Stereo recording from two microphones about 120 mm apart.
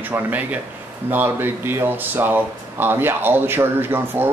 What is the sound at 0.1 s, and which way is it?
A man's voice, 15° right (ahead or behind).